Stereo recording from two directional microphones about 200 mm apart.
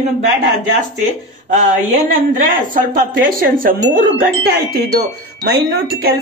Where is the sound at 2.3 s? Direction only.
45° right (ahead or behind).